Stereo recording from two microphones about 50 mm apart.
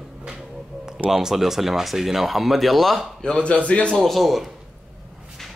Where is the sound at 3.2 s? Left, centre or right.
Left.